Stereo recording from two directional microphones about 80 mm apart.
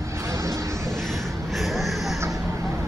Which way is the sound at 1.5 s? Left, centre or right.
Centre.